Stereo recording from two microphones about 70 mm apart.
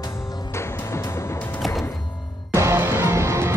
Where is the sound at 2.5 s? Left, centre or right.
Right.